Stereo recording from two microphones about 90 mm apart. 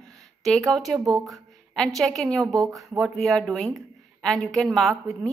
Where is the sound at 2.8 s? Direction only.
Centre (ahead or behind).